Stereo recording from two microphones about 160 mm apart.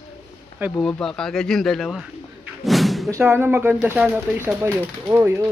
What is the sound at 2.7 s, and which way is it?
Thump, centre (ahead or behind).